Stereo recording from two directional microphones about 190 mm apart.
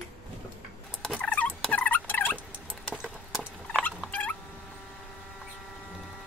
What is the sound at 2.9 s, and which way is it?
Rodents, centre (ahead or behind).